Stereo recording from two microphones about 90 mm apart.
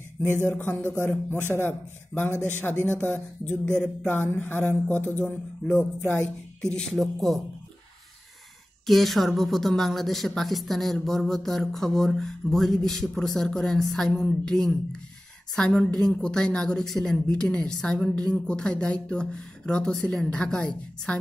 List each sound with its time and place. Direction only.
0.5 s a woman's voice: 15° left (ahead or behind)
8.8 s a woman's voice: centre (ahead or behind)